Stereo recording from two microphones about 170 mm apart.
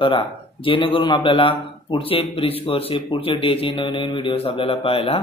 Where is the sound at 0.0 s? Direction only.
30° left (ahead or behind).